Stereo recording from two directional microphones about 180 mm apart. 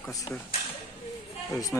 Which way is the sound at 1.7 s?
10° left (ahead or behind).